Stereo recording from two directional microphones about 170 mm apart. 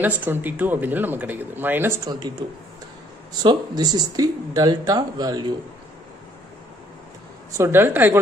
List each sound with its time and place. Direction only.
0.0 s a man's voice: 10° right (ahead or behind)
2.0 s speech: 25° right (ahead or behind)
3.4 s speech: 25° right (ahead or behind)
7.5 s a man's voice: 15° right (ahead or behind)